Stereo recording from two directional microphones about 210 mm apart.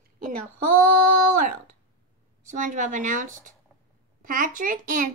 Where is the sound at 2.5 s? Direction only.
40° right (ahead or behind).